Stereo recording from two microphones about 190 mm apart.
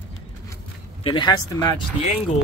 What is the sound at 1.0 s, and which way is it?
Speech, 25° left (ahead or behind).